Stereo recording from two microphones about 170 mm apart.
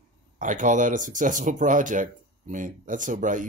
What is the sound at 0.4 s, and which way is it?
Speech, 50° right (ahead or behind).